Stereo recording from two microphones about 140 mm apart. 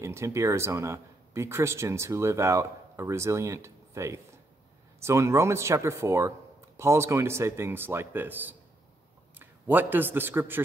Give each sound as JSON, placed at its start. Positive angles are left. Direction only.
{"t": 0.0, "sound": "a man's voice", "side_deg": -20}